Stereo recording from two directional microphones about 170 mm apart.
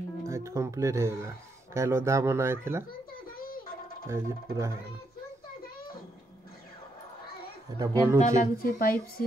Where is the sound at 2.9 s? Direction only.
60° left (ahead or behind).